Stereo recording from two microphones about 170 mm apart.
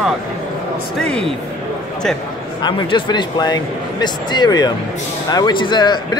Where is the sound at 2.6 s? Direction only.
25° left (ahead or behind).